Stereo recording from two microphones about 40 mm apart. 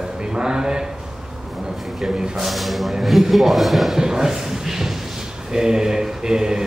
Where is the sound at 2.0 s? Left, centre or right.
Centre.